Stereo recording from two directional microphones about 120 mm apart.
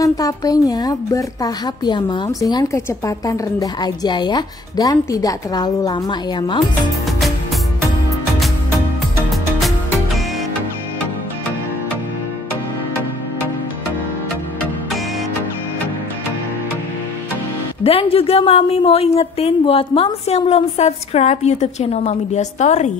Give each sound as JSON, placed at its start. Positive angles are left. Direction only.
{"t": 0.0, "sound": "a woman's voice", "side_deg": 30}
{"t": 2.2, "sound": "a woman's voice", "side_deg": 30}
{"t": 17.8, "sound": "a woman's voice", "side_deg": 50}